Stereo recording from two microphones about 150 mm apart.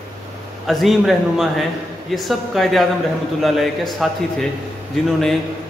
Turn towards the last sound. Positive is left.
turn(degrees=0)  # may be behind; listen again after turning